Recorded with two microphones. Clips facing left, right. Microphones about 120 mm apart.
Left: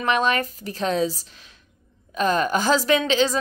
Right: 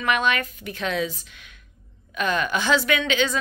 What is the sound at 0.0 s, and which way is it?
A woman's voice, 35° left (ahead or behind).